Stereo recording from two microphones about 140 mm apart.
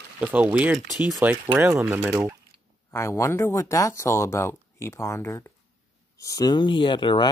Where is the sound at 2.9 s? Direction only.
20° left (ahead or behind).